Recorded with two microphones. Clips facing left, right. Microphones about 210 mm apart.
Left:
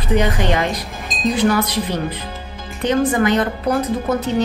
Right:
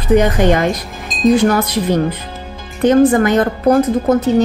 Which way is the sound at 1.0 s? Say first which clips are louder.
Right 8 dB; centre (ahead or behind).